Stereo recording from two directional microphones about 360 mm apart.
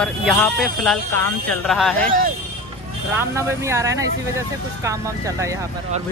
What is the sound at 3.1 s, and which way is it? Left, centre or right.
Speech, centre.